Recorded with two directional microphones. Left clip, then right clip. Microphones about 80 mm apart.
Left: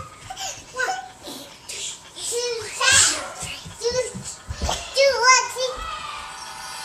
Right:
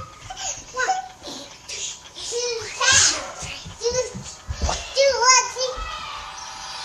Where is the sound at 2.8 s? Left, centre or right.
Centre.